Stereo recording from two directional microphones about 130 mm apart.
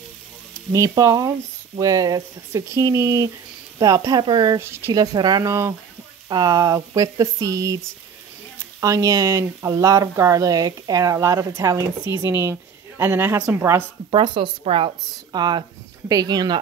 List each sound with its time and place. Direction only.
0.7 s speech: 25° right (ahead or behind)
4.6 s speech: 20° right (ahead or behind)
4.9 s a woman's voice: 30° right (ahead or behind)
5.4 s speech: 25° right (ahead or behind)
8.8 s speech: 25° right (ahead or behind)
14.1 s a woman's voice: 40° right (ahead or behind)
15.3 s a woman's voice: 35° right (ahead or behind)